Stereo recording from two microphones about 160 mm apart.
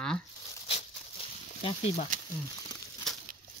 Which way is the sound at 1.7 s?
40° left (ahead or behind).